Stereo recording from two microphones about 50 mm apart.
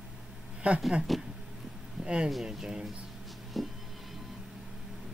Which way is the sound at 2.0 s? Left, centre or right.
Centre.